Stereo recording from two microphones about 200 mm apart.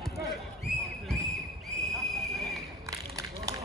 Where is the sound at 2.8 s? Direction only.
15° right (ahead or behind).